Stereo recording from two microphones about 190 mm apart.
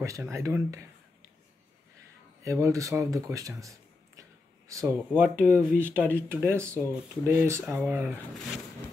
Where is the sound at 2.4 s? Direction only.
15° right (ahead or behind).